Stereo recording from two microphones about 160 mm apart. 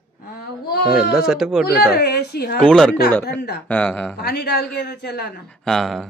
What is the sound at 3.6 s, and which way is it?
Speech, 10° left (ahead or behind).